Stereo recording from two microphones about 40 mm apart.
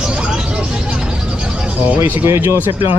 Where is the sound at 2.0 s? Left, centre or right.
Right.